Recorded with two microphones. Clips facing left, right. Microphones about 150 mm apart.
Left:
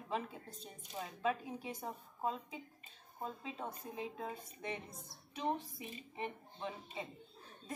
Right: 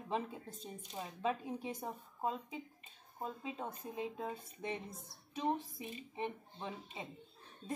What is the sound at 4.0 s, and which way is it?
Speech, 20° right (ahead or behind).